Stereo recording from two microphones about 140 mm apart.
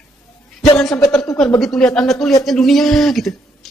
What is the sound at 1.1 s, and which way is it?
A woman's voice, 5° left (ahead or behind).